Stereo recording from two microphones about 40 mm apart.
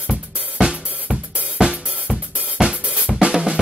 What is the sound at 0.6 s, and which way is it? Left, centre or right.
Drum, right.